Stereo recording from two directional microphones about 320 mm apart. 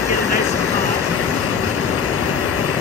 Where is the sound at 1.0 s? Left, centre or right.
Left.